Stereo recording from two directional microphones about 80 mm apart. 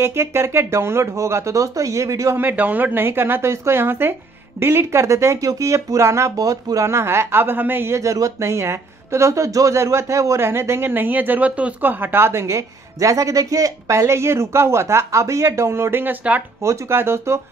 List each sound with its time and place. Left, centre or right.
0.0 s speech: right
2.3 s speech: right
8.0 s speech: right
16.6 s speech: right